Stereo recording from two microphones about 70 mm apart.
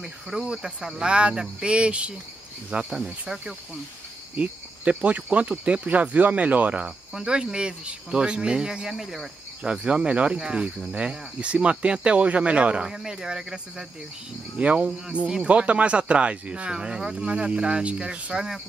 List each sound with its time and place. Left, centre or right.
0.0 s speech: centre
4.4 s speech: centre